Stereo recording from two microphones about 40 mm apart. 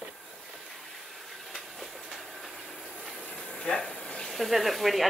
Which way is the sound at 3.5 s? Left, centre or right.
Left.